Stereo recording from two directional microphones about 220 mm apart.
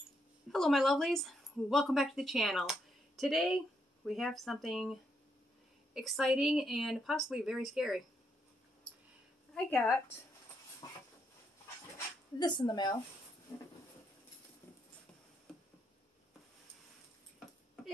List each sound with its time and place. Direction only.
0.5 s speech: centre (ahead or behind)
5.9 s speech: centre (ahead or behind)
9.5 s speech: 5° left (ahead or behind)
10.8 s a sound: 15° left (ahead or behind)
12.4 s a woman's voice: 20° left (ahead or behind)